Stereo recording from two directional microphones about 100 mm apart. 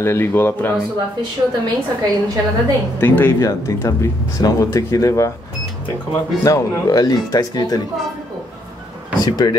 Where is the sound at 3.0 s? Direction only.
20° left (ahead or behind).